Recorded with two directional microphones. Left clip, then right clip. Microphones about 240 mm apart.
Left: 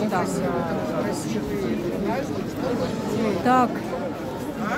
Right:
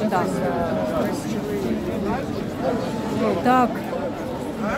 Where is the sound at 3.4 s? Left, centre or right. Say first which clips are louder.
Right 1 dB; centre.